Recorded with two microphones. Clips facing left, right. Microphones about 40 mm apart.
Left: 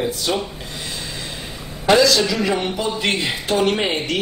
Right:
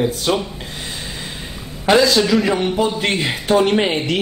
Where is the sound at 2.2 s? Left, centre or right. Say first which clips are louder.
Right 3 dB; centre.